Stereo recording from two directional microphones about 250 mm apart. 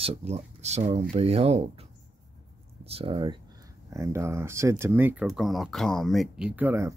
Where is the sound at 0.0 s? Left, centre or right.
Right.